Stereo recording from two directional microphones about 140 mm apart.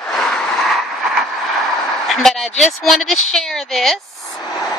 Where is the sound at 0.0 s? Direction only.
5° left (ahead or behind).